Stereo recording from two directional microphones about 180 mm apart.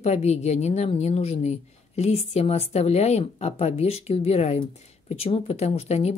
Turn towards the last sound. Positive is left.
turn(degrees=35)  # may be behind; listen again after turning